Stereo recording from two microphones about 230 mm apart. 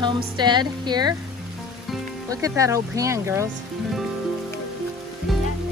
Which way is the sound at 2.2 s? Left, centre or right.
Centre.